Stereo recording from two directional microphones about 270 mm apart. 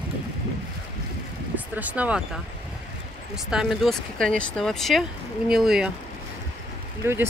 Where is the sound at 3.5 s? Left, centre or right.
Centre.